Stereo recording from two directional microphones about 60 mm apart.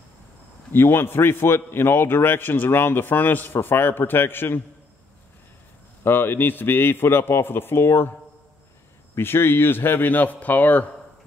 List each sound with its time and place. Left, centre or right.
0.7 s a man's voice: left
6.0 s a man's voice: left
9.1 s a man's voice: left